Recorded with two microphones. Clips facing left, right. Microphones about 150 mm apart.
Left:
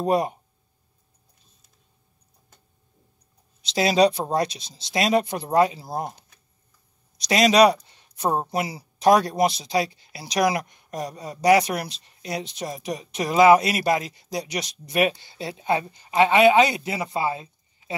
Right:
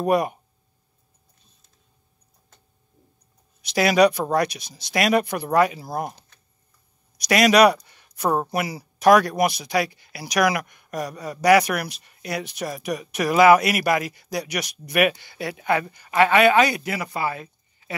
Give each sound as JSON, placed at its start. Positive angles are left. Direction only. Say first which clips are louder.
{"t": 0.0, "sound": "speech", "louder": "right 1 dB", "side_deg": 25}
{"t": 3.6, "sound": "speech", "louder": "right 2 dB", "side_deg": 25}
{"t": 7.2, "sound": "speech", "louder": "right 1 dB", "side_deg": 25}